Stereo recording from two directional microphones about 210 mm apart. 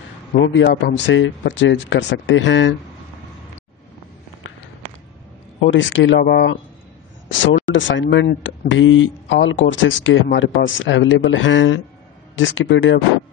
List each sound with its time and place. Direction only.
0.4 s speech: 60° left (ahead or behind)
5.6 s speech: 60° left (ahead or behind)
7.7 s speech: 60° left (ahead or behind)